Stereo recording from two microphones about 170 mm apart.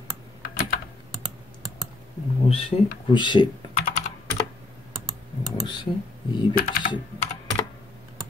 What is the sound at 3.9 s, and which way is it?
Computer keyboard, 45° left (ahead or behind).